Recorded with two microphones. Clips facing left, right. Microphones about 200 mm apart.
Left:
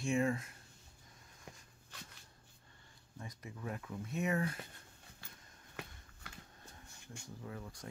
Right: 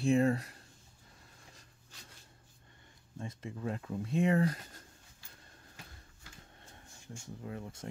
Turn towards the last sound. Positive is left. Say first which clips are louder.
# right 4 dB
turn(degrees=-25)  # may be behind; listen again after turning